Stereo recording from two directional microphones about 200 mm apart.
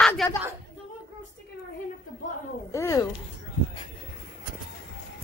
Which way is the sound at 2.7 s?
15° left (ahead or behind).